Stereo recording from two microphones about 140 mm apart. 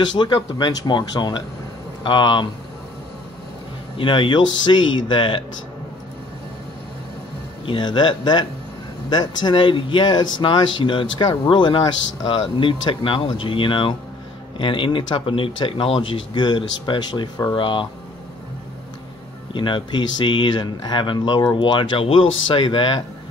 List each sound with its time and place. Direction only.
0.0 s speech: 35° left (ahead or behind)
3.9 s speech: 35° left (ahead or behind)
7.6 s speech: 35° left (ahead or behind)
19.5 s speech: 35° left (ahead or behind)